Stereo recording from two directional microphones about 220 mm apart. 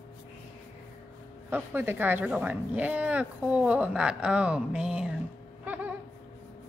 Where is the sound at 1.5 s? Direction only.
10° right (ahead or behind).